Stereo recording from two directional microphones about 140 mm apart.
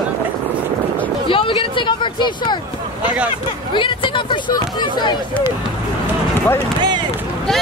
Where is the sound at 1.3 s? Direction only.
40° left (ahead or behind).